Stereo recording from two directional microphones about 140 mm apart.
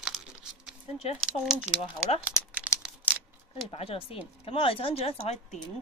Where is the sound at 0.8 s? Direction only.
45° left (ahead or behind).